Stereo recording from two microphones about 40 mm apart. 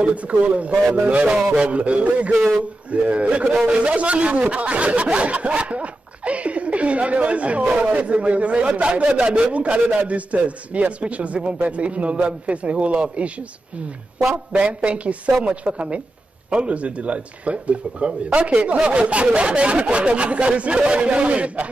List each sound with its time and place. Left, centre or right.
0.0 s snicker: right
14.3 s snicker: right
18.6 s speech: right
19.9 s snicker: right